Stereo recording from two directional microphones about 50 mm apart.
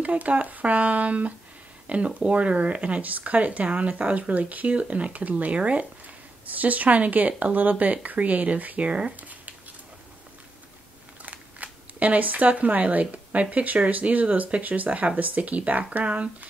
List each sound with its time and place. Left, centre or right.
0.0 s speech: right
11.2 s camera: right
13.0 s speech: right